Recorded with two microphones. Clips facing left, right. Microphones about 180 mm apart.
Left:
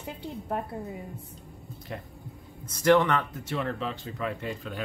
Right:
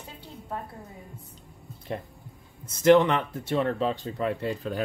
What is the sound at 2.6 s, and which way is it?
Speech, 25° right (ahead or behind).